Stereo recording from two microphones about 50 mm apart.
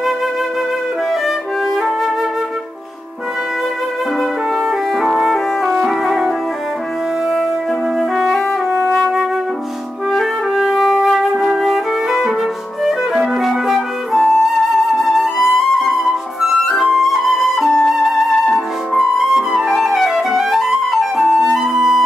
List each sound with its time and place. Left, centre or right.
4.2 s music: centre
10.1 s music: centre
12.8 s flute: centre
17.9 s music: centre
18.9 s flute: centre